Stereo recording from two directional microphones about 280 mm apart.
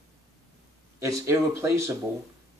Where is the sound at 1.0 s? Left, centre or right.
Centre.